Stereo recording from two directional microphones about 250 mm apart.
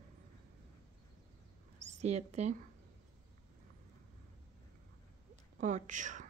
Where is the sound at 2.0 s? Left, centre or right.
Right.